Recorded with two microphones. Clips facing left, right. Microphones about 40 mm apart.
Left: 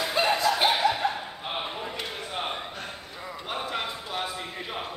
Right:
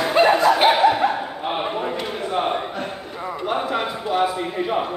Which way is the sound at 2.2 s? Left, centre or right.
Centre.